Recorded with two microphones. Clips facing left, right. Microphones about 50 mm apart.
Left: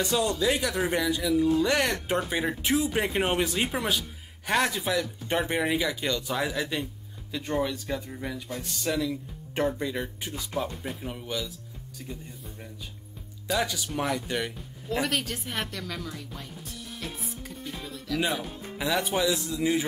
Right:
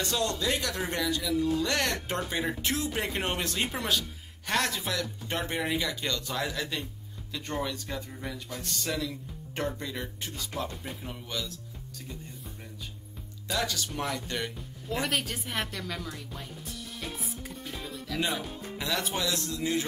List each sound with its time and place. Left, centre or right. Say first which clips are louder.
0.0 s speech: left 4 dB; centre
13.5 s speech: left 3 dB; centre
14.9 s speech: left 2 dB; centre
18.8 s speech: left 5 dB; centre